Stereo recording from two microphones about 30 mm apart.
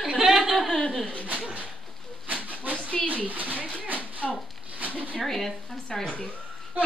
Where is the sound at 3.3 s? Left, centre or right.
Right.